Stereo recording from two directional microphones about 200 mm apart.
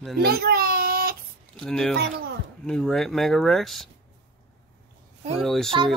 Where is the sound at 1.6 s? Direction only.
5° left (ahead or behind).